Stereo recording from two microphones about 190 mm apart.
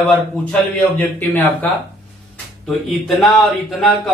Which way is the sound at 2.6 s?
Centre (ahead or behind).